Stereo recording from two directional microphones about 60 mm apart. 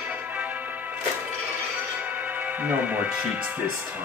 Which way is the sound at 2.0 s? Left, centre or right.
Right.